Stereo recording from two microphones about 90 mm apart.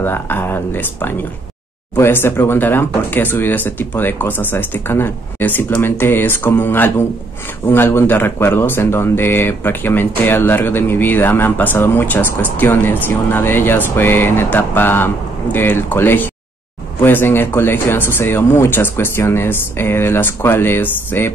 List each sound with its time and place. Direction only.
0.0 s speech: 25° left (ahead or behind)